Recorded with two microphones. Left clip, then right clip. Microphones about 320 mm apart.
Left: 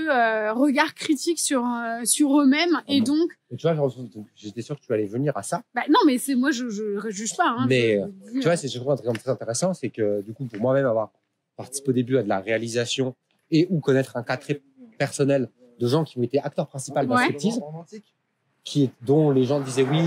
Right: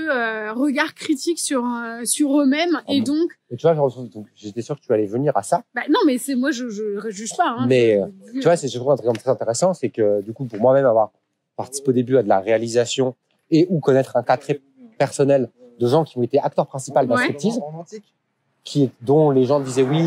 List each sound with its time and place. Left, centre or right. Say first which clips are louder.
0.0 s speech: left 1 dB; centre
3.5 s speech: right 7 dB; centre
5.8 s speech: left 2 dB; centre
7.7 s speech: right 5 dB; right
18.6 s speech: right 4 dB; centre